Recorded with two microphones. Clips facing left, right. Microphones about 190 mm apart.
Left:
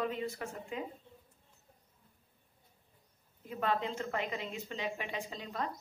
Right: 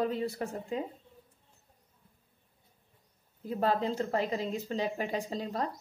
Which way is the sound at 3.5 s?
35° right (ahead or behind).